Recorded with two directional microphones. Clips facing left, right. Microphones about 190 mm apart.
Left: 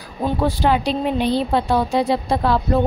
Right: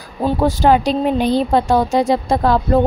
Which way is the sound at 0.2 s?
45° right (ahead or behind).